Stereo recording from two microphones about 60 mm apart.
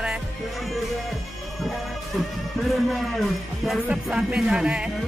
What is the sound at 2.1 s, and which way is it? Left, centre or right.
A man's voice, centre.